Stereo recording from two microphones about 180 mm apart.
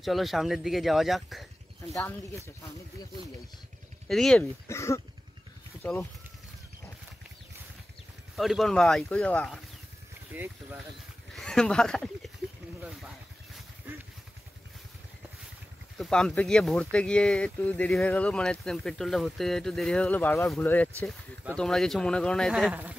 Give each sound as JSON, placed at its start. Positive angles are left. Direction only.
{"t": 0.0, "sound": "speech", "side_deg": 0}
{"t": 2.0, "sound": "speech", "side_deg": 15}
{"t": 4.1, "sound": "speech", "side_deg": 5}
{"t": 4.6, "sound": "speech", "side_deg": 15}
{"t": 8.4, "sound": "speech", "side_deg": 0}
{"t": 10.3, "sound": "speech", "side_deg": -10}
{"t": 11.3, "sound": "speech", "side_deg": 5}
{"t": 16.0, "sound": "speech", "side_deg": 5}